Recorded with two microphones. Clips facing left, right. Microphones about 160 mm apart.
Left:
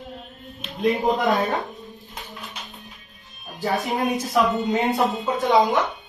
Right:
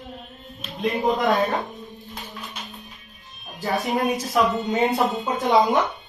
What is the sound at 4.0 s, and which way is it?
A man's voice, centre (ahead or behind).